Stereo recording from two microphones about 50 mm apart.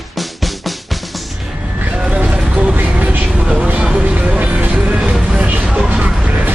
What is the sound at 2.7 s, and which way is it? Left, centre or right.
Vehicle, right.